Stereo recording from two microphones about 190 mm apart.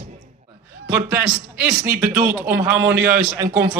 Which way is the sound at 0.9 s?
10° right (ahead or behind).